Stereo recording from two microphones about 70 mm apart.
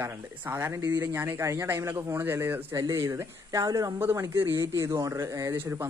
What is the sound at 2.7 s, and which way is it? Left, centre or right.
Speech, right.